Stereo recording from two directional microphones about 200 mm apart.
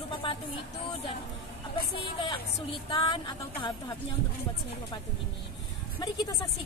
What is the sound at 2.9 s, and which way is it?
Speech, 25° left (ahead or behind).